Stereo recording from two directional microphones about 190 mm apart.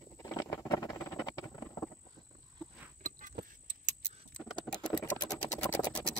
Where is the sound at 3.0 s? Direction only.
45° right (ahead or behind).